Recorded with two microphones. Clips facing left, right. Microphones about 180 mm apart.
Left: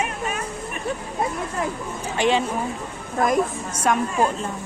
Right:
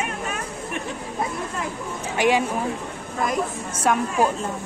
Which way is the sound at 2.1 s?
10° right (ahead or behind).